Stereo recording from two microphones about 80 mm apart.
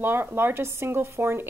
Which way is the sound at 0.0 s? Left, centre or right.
Right.